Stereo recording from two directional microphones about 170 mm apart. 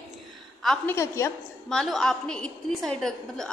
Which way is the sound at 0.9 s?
15° left (ahead or behind).